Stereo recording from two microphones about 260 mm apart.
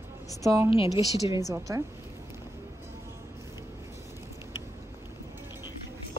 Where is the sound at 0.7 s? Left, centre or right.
Left.